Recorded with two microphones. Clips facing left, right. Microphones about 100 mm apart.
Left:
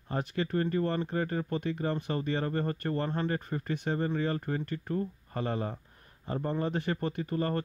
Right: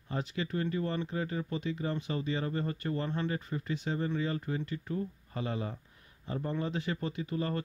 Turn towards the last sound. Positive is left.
turn(degrees=50)  # may be behind; listen again after turning